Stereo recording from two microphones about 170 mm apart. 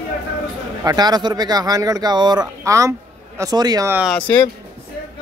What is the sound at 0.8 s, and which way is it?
Speech, 25° right (ahead or behind).